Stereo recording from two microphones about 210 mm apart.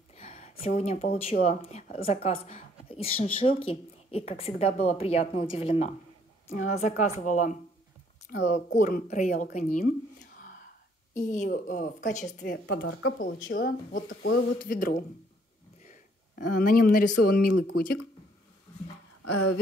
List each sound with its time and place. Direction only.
0.2 s a woman's voice: 30° left (ahead or behind)
8.7 s speech: 40° left (ahead or behind)
12.6 s speech: 60° left (ahead or behind)
13.2 s speech: 40° left (ahead or behind)
16.4 s speech: 45° left (ahead or behind)